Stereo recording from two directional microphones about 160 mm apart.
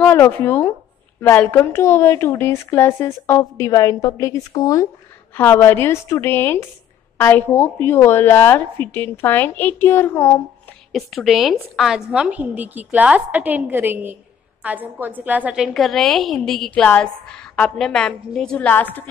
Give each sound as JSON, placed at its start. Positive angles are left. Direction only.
{"t": 0.0, "sound": "a woman's voice", "side_deg": 15}
{"t": 10.9, "sound": "a woman's voice", "side_deg": 0}